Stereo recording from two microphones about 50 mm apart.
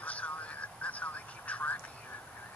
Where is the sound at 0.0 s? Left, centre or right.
Left.